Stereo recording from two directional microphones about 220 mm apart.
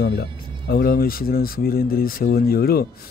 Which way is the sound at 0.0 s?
50° left (ahead or behind).